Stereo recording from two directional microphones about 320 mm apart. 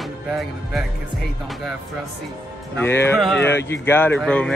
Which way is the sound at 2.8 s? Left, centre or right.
Centre.